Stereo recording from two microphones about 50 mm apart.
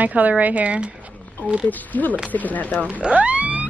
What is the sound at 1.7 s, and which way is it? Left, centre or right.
Speech, left.